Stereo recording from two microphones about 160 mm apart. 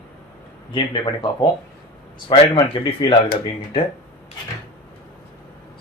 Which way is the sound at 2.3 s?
25° left (ahead or behind).